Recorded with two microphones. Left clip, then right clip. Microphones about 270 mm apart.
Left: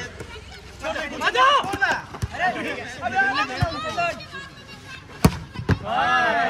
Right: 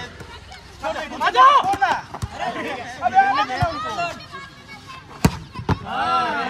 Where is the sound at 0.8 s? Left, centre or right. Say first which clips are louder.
Right 2 dB; right.